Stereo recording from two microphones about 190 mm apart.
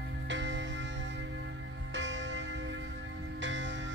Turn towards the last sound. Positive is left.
turn(degrees=-75)  # may be behind; listen again after turning